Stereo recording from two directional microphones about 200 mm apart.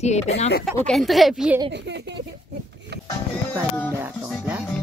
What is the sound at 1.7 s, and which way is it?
Music, 60° right (ahead or behind).